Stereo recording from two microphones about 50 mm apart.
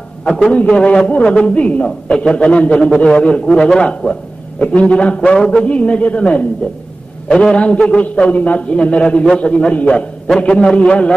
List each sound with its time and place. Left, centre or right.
0.3 s a man's voice: centre
0.6 s a man's voice: left
7.5 s a man's voice: left